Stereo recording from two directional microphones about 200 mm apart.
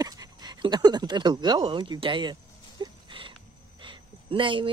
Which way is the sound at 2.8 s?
25° right (ahead or behind).